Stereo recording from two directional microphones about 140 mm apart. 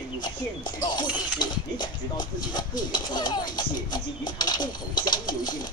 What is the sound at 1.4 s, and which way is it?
Speech, 30° left (ahead or behind).